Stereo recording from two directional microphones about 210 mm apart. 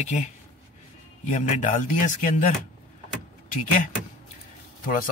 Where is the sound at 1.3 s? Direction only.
35° left (ahead or behind).